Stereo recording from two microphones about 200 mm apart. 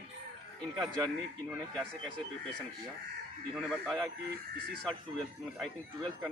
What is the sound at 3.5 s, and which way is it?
Speech, centre (ahead or behind).